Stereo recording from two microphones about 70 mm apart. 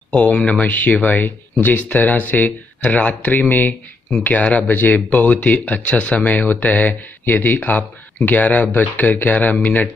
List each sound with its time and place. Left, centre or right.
0.1 s speech: centre